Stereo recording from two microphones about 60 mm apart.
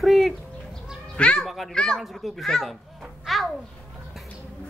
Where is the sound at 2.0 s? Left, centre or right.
Centre.